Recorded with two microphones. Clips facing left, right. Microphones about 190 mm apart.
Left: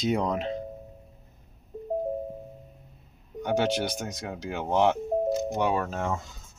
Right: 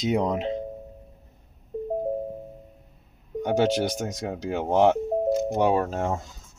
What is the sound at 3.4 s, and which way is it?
Speech, 40° right (ahead or behind).